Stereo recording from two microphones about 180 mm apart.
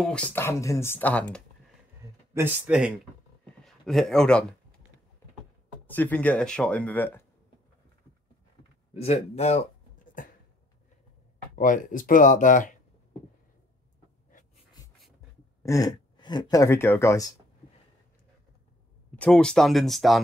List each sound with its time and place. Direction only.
0.0 s speech: 5° left (ahead or behind)
2.3 s speech: 10° right (ahead or behind)
5.9 s speech: 10° left (ahead or behind)
8.9 s speech: 35° left (ahead or behind)
10.2 s a sound: 50° left (ahead or behind)
11.5 s speech: 45° left (ahead or behind)
15.6 s speech: 20° left (ahead or behind)
19.1 s speech: 5° left (ahead or behind)